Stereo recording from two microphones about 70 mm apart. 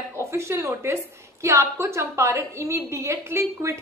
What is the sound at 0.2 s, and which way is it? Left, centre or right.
A woman's voice, right.